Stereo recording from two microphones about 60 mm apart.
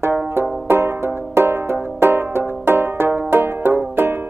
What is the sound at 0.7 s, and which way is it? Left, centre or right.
Music, right.